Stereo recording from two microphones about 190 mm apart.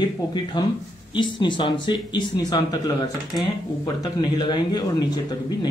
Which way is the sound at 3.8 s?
20° left (ahead or behind).